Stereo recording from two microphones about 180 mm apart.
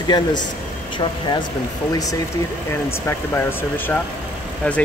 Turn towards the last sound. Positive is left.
turn(degrees=10)  # may be behind; listen again after turning